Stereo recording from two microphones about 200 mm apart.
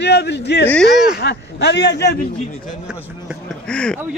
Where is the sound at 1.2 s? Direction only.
55° left (ahead or behind).